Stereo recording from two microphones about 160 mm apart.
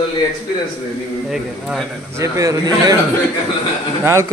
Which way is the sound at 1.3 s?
Centre (ahead or behind).